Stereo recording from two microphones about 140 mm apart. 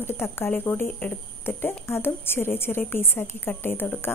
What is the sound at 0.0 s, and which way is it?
A woman's voice, 15° left (ahead or behind).